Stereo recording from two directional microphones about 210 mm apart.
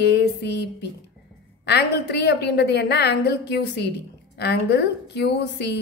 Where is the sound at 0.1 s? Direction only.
55° left (ahead or behind).